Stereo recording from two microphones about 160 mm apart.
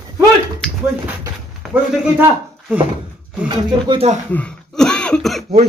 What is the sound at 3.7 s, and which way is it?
Speech, 30° right (ahead or behind).